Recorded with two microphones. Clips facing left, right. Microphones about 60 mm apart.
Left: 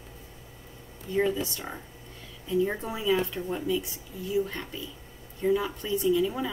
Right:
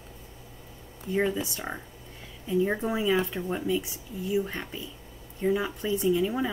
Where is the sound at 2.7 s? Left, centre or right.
Right.